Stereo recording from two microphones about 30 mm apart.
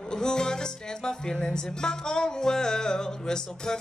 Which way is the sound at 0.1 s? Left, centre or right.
Left.